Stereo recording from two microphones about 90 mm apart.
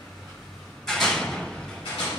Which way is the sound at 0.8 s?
5° left (ahead or behind).